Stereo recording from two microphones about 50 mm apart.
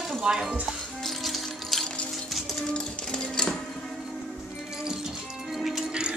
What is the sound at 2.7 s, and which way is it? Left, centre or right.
Music, centre.